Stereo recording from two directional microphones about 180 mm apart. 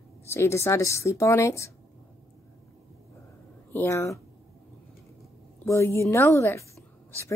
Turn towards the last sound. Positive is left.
turn(degrees=15)  # may be behind; listen again after turning